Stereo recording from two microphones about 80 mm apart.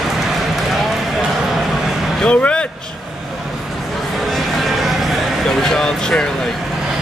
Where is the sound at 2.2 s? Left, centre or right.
Centre.